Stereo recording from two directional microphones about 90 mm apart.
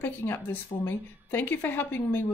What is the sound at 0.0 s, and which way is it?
Speech, 25° left (ahead or behind).